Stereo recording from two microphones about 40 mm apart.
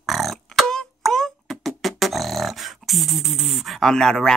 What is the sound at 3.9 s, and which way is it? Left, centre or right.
Speech, centre.